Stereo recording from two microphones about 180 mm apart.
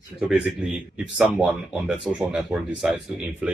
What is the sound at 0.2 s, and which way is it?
A man's voice, 5° right (ahead or behind).